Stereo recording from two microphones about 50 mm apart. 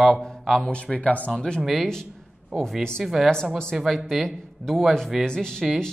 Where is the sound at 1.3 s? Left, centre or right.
Centre.